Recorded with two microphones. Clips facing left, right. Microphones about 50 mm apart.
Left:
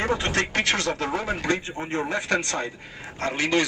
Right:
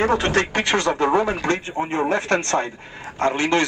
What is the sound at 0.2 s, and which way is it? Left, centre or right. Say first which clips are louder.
Speech: right 4 dB; right.